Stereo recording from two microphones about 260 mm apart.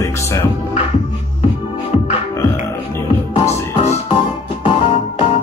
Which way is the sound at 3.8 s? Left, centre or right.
Left.